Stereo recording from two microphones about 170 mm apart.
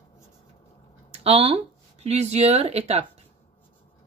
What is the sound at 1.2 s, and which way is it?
Speech, 35° right (ahead or behind).